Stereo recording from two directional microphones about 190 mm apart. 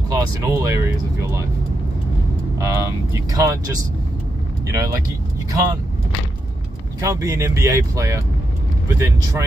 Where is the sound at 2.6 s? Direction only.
15° right (ahead or behind).